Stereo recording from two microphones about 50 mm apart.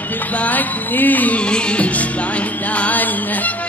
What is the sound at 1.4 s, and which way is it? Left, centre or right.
Music, left.